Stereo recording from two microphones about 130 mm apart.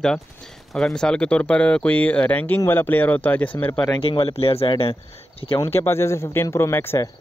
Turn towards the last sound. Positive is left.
turn(degrees=20)  # may be behind; listen again after turning